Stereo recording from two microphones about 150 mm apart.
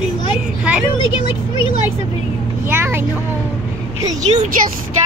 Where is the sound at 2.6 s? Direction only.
15° right (ahead or behind).